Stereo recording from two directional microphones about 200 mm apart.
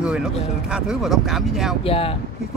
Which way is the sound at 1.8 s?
30° left (ahead or behind).